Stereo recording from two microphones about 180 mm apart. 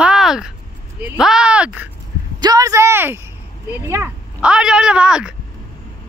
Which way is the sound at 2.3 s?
20° right (ahead or behind).